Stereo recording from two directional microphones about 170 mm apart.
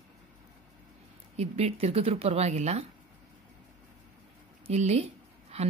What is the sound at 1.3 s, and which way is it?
Speech, 40° right (ahead or behind).